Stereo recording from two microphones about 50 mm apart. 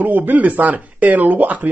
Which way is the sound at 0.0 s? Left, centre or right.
Right.